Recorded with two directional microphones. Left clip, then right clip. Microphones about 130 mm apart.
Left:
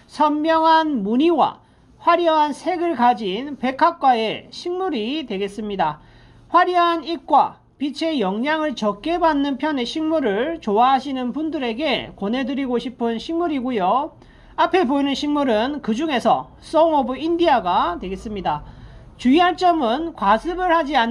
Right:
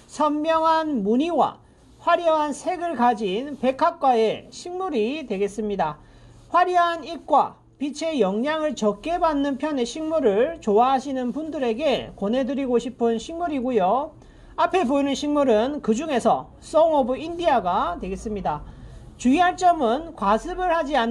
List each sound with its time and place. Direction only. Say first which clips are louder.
0.1 s a woman's voice: left 4 dB; 35° right (ahead or behind)